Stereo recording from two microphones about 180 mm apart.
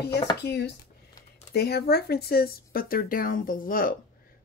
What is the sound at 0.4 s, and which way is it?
Speech, 70° left (ahead or behind).